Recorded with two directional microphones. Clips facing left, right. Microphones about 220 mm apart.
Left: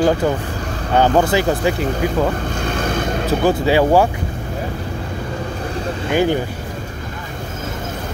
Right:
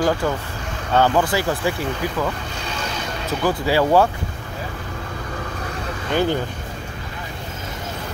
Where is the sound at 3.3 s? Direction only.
25° left (ahead or behind).